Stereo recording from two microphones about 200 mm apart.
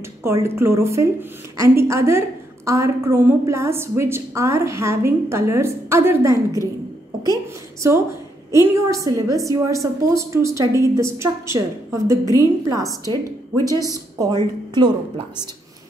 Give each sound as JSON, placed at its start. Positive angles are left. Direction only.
{"t": 0.2, "sound": "a woman's voice", "side_deg": -15}
{"t": 8.5, "sound": "a woman's voice", "side_deg": -15}